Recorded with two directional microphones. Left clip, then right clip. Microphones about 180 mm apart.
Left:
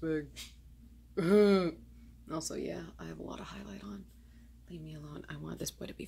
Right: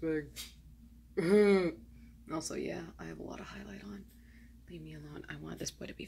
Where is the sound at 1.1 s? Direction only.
15° left (ahead or behind).